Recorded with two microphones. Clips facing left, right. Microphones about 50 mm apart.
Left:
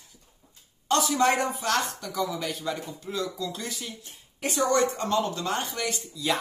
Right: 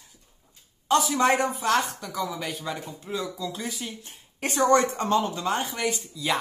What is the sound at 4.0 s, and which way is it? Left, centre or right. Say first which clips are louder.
Speech: right 1 dB; right.